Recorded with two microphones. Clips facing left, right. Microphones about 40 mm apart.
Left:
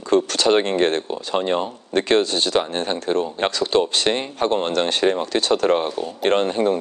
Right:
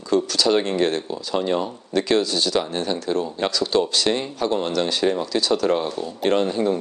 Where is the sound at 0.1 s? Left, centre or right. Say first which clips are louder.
Left 2 dB; left.